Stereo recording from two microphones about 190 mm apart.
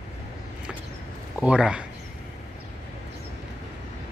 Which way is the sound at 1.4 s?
5° right (ahead or behind).